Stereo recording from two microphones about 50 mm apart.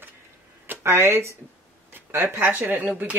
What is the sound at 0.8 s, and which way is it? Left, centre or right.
Speech, right.